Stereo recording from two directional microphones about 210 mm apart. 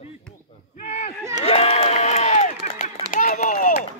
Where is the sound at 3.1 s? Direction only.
40° left (ahead or behind).